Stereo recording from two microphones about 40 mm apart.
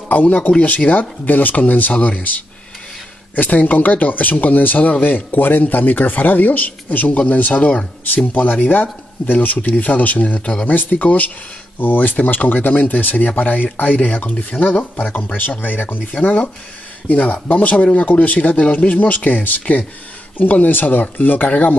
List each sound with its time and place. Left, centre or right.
0.1 s speech: left
15.3 s speech: left
16.1 s speech: left
19.6 s speech: left
20.3 s speech: left